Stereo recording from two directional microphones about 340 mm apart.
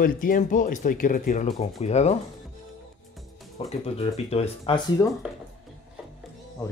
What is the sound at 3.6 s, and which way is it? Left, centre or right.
Speech, centre.